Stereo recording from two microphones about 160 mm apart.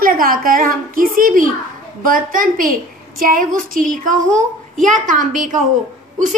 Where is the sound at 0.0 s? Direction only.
65° right (ahead or behind).